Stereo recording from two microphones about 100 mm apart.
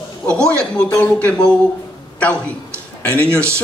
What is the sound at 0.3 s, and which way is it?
A woman's voice, 10° left (ahead or behind).